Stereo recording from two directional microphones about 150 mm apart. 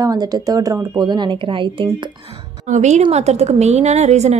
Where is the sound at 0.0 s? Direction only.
25° right (ahead or behind).